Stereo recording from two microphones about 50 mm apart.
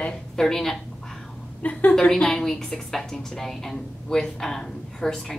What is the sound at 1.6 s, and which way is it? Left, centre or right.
Speech, left.